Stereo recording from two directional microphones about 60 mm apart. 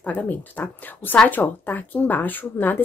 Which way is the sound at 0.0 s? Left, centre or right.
Left.